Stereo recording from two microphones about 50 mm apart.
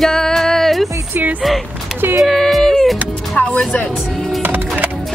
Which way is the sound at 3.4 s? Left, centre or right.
Left.